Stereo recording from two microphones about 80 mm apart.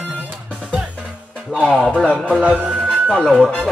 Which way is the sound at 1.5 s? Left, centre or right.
Centre.